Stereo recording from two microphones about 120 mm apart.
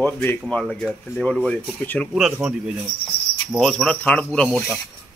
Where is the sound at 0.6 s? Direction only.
5° left (ahead or behind).